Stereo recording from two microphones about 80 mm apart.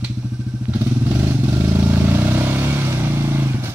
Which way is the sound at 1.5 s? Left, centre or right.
Right.